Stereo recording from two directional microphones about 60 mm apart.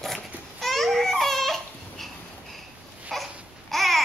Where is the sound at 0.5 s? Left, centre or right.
Centre.